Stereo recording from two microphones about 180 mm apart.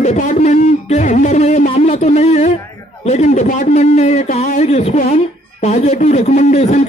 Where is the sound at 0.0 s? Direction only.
40° left (ahead or behind).